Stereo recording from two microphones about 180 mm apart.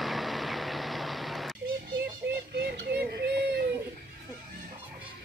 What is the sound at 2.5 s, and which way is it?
Synthetic singing, 65° right (ahead or behind).